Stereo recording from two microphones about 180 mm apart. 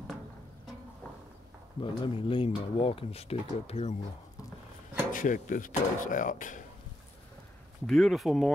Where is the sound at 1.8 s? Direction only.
30° left (ahead or behind).